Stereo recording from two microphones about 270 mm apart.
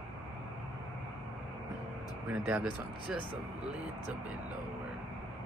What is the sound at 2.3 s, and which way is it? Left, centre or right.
Speech, centre.